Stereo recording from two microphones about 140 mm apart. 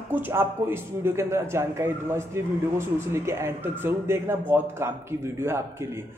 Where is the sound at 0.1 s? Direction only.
15° right (ahead or behind).